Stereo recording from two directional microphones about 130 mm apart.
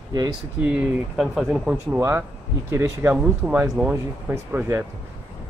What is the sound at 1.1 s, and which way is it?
Speech, centre (ahead or behind).